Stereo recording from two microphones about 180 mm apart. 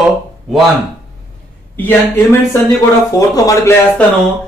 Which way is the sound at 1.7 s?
15° left (ahead or behind).